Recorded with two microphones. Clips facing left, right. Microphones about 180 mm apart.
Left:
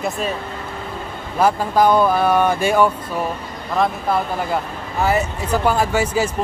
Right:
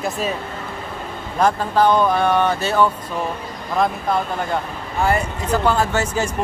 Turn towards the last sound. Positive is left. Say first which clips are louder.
# left 2 dB
turn(degrees=10)  # may be behind; listen again after turning